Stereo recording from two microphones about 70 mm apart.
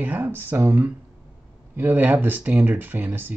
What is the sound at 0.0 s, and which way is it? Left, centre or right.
Speech, right.